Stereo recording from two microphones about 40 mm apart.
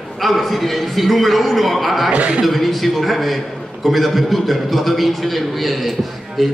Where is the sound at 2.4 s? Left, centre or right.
Centre.